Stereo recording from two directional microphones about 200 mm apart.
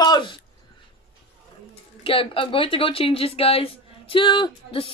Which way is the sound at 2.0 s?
25° left (ahead or behind).